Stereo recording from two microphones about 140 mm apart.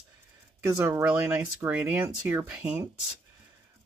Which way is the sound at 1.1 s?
10° right (ahead or behind).